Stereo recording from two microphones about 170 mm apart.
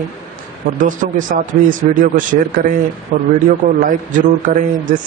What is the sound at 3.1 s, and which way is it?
A man's voice, 50° right (ahead or behind).